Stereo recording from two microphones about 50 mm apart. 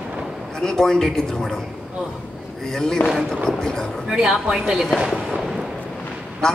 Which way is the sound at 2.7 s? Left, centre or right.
Centre.